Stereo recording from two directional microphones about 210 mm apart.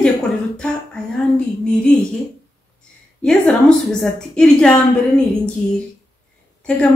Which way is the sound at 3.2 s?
5° left (ahead or behind).